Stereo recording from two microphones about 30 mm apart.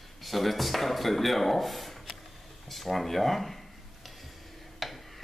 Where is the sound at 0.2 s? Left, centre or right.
Centre.